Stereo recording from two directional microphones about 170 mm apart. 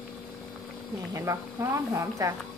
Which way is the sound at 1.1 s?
20° right (ahead or behind).